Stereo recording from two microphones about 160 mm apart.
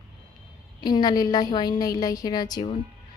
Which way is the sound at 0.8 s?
25° left (ahead or behind).